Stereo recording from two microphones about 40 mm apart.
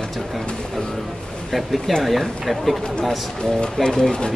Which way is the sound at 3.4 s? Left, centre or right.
Centre.